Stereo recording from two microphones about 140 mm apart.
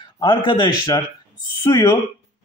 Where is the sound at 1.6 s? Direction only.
20° left (ahead or behind).